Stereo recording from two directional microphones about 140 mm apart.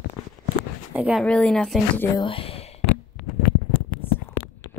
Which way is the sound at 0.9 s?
10° right (ahead or behind).